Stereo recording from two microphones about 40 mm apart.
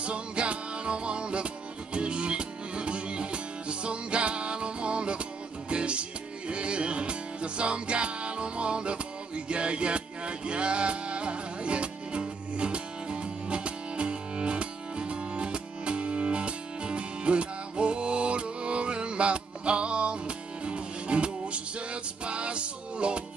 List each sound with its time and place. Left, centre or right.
0.0 s music: right